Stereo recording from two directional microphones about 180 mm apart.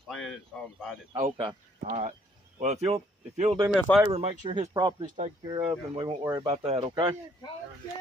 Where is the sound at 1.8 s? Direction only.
40° right (ahead or behind).